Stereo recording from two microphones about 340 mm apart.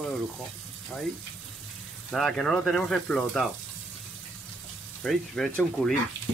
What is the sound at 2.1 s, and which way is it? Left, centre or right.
Speech, centre.